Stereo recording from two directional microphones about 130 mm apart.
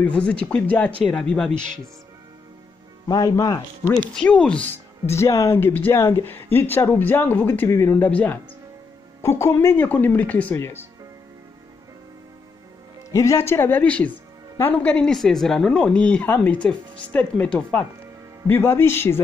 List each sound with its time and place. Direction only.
0.0 s speech: 10° left (ahead or behind)
3.1 s speech: 30° left (ahead or behind)
4.1 s speech: 10° left (ahead or behind)
13.1 s speech: 25° left (ahead or behind)